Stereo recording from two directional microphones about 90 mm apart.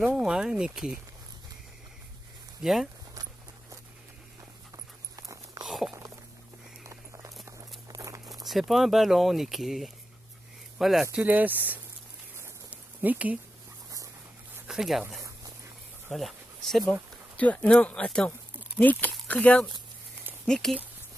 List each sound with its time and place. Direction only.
0.0 s speech: 5° right (ahead or behind)
2.6 s speech: 5° right (ahead or behind)
5.1 s dog: 40° right (ahead or behind)
5.7 s a sound: centre (ahead or behind)
6.8 s a sound: 30° right (ahead or behind)
8.5 s speech: centre (ahead or behind)
11.1 s speech: 20° right (ahead or behind)
12.6 s a sound: 15° right (ahead or behind)
14.7 s speech: 5° right (ahead or behind)
17.4 s speech: 15° left (ahead or behind)
20.4 s speech: 5° left (ahead or behind)